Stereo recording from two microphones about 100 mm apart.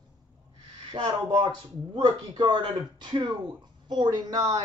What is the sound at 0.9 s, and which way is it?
Speech, 55° right (ahead or behind).